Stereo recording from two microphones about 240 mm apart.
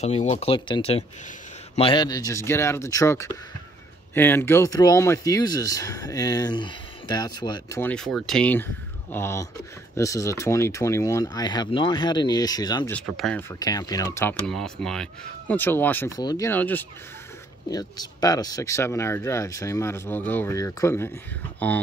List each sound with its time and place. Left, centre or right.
0.0 s speech: left
7.8 s speech: centre
12.9 s speech: centre
13.6 s speech: centre